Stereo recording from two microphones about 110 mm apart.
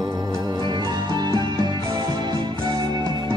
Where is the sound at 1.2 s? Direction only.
40° right (ahead or behind).